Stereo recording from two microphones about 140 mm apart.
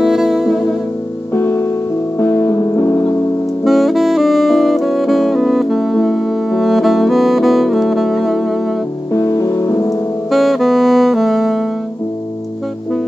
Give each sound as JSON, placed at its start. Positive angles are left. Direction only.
{"t": 0.0, "sound": "music", "side_deg": -5}
{"t": 1.3, "sound": "music", "side_deg": 15}
{"t": 3.6, "sound": "saxophone", "side_deg": 0}
{"t": 9.1, "sound": "music", "side_deg": 20}
{"t": 10.3, "sound": "saxophone", "side_deg": 0}